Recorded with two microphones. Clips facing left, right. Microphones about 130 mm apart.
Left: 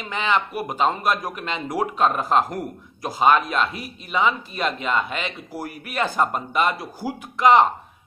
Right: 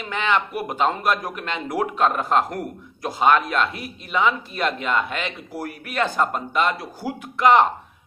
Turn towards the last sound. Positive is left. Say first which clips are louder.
# even
turn(degrees=0)  # may be behind; listen again after turning